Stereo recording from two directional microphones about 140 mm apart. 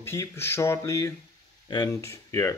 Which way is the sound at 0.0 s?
20° left (ahead or behind).